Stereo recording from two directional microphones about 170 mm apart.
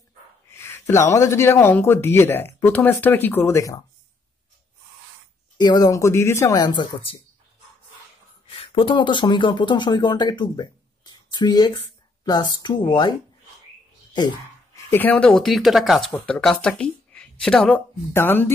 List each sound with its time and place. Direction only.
0.5 s a sound: 15° left (ahead or behind)
1.1 s speech: 15° left (ahead or behind)
5.6 s speech: 25° left (ahead or behind)
8.5 s speech: 30° left (ahead or behind)
14.9 s speech: 10° left (ahead or behind)